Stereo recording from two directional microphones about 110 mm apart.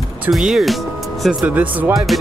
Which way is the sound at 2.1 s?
Centre (ahead or behind).